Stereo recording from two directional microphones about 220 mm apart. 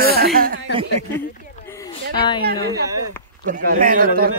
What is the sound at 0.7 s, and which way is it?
Speech, 25° right (ahead or behind).